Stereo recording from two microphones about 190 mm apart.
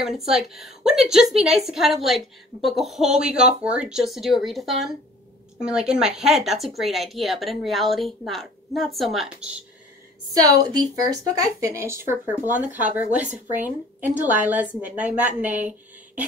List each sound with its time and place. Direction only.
0.0 s a woman's voice: centre (ahead or behind)
10.4 s speech: 20° right (ahead or behind)
14.2 s speech: 10° right (ahead or behind)